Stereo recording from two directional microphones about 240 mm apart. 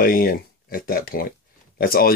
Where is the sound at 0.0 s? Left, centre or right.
Left.